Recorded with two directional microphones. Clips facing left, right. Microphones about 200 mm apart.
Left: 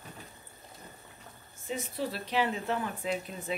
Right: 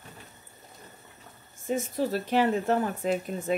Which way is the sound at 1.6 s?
45° right (ahead or behind).